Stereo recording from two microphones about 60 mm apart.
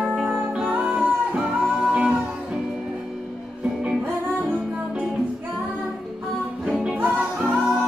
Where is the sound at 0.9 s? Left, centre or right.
Right.